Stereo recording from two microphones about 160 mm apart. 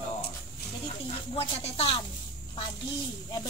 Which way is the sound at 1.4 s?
40° left (ahead or behind).